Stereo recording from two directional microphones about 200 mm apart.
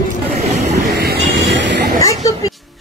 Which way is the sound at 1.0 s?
55° right (ahead or behind).